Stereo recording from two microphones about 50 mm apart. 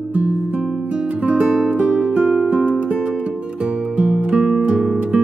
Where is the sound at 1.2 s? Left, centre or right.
Right.